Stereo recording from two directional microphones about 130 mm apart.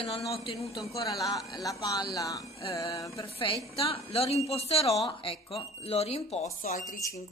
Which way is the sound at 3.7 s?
50° left (ahead or behind).